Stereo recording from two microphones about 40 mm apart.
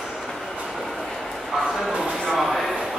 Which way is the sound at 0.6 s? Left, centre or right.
Centre.